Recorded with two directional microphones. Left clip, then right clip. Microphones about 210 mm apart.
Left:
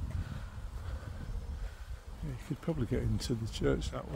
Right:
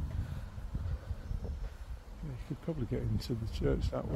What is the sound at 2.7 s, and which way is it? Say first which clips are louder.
Speech: left 2 dB; 20° left (ahead or behind).